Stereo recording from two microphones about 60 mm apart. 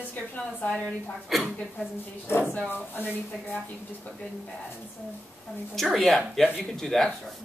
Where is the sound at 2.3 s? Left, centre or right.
Left.